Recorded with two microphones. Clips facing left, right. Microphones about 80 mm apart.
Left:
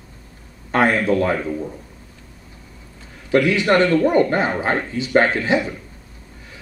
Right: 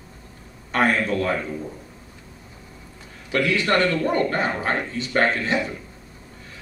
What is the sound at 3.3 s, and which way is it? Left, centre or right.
A man's voice, centre.